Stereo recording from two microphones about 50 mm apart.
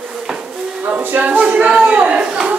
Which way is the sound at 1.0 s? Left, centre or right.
Right.